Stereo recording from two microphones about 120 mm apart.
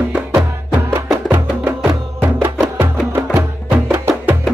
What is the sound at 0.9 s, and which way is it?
Music, 20° right (ahead or behind).